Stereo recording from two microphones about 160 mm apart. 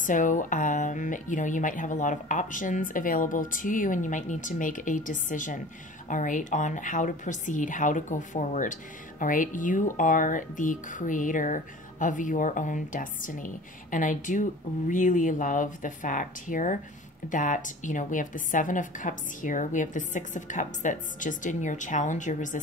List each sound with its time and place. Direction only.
0.0 s speech: 55° left (ahead or behind)